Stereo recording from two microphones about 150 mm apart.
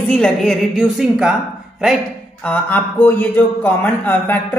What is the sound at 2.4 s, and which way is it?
A woman's voice, 10° left (ahead or behind).